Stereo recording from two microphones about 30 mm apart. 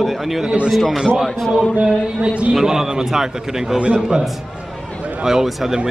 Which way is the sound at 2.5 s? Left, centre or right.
Centre.